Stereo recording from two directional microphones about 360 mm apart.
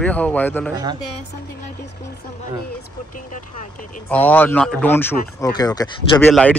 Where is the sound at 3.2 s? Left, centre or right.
Left.